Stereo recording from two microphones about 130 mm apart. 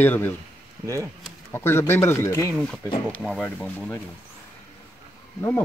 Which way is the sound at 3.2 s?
Centre (ahead or behind).